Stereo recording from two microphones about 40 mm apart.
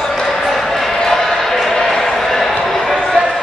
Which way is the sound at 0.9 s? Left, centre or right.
Centre.